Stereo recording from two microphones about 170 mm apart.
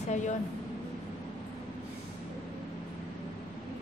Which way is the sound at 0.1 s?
45° left (ahead or behind).